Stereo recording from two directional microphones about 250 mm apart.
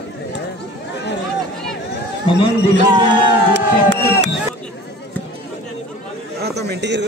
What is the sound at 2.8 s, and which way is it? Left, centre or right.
Music, centre.